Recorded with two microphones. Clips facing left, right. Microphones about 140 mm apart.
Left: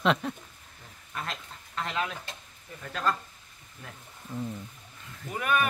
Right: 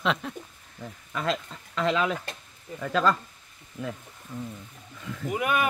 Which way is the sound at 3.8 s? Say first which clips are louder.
Right 13 dB; 90° right.